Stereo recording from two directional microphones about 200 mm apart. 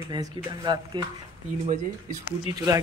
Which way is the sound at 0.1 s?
20° right (ahead or behind).